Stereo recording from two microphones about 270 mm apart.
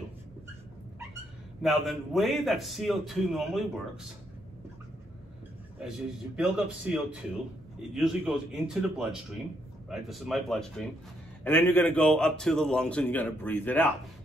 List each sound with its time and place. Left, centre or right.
1.6 s a man's voice: centre
6.3 s a man's voice: centre